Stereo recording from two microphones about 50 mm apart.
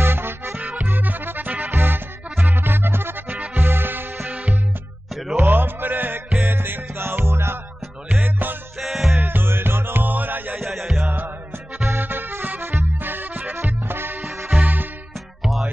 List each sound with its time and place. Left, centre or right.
0.0 s music: right
0.7 s music: right
4.3 s music: right
5.3 s music: right
8.1 s music: right
8.7 s music: centre
9.2 s music: right
10.6 s music: centre
11.8 s music: right